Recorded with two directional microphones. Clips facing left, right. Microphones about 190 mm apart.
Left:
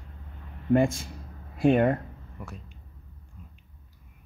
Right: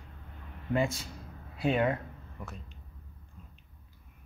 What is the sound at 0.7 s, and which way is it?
Speech, 50° left (ahead or behind).